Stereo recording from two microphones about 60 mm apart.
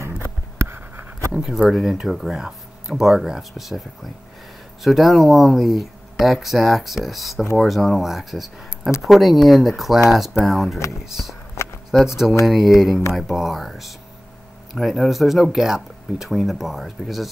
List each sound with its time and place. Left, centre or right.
0.6 s writing: right
1.3 s speech: centre